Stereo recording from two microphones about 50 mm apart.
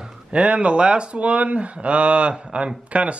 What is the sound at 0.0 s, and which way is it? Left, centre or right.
A man's voice, right.